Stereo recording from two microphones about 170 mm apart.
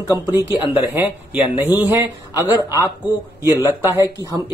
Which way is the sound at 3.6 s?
15° right (ahead or behind).